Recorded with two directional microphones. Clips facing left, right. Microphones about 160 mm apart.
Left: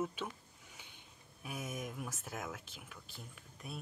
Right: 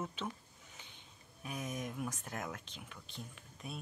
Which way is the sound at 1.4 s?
5° left (ahead or behind).